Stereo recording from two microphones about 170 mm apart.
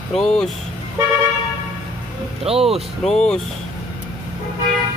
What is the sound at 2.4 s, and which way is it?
Speech, 35° right (ahead or behind).